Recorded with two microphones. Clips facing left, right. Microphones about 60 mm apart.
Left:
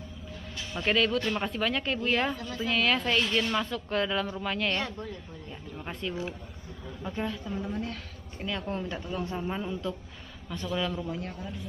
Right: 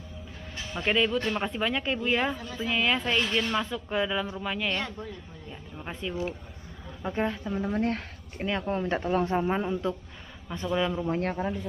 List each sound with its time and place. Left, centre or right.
0.8 s speech: centre
7.0 s a man's voice: right
7.6 s speech: right
8.5 s a man's voice: right
8.9 s speech: right
9.3 s a man's voice: right
11.1 s speech: right